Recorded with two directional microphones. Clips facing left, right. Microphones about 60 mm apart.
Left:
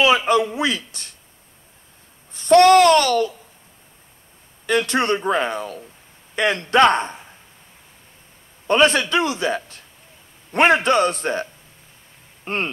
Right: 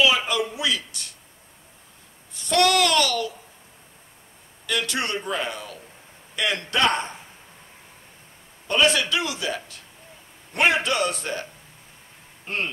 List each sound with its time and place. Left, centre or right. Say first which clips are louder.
0.0 s a man's voice: left 5 dB; left
2.3 s a man's voice: left 9 dB; left
4.6 s a man's voice: left 8 dB; left
8.6 s a man's voice: left 5 dB; left
12.4 s speech: left 4 dB; left